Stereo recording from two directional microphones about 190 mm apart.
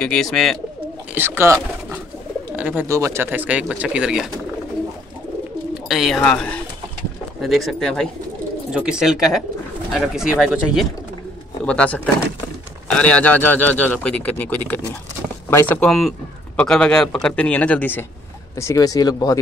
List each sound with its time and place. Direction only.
0.0 s a man's voice: 5° left (ahead or behind)
1.1 s speech: 10° right (ahead or behind)
5.9 s a man's voice: centre (ahead or behind)
11.6 s a man's voice: 5° left (ahead or behind)